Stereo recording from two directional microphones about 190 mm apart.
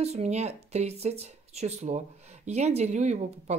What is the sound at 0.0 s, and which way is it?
Speech, 35° right (ahead or behind).